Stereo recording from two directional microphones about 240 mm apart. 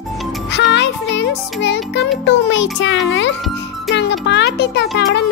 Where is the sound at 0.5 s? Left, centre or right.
Left.